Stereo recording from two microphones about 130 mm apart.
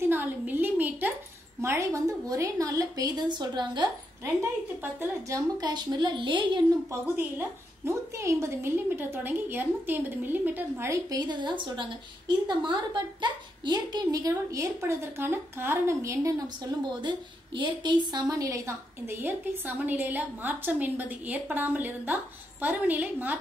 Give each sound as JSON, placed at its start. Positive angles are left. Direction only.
{"t": 0.0, "sound": "a sound", "side_deg": -15}
{"t": 1.6, "sound": "a woman's voice", "side_deg": -20}
{"t": 4.2, "sound": "a woman's voice", "side_deg": -15}
{"t": 5.6, "sound": "a woman's voice", "side_deg": -35}
{"t": 6.9, "sound": "a woman's voice", "side_deg": -20}
{"t": 17.6, "sound": "a woman's voice", "side_deg": -35}